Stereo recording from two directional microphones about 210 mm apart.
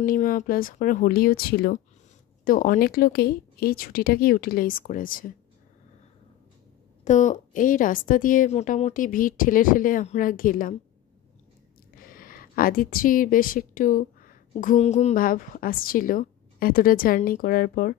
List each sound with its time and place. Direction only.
0.0 s speech: 40° left (ahead or behind)
7.1 s a woman's voice: 35° left (ahead or behind)
11.9 s a woman's voice: 45° left (ahead or behind)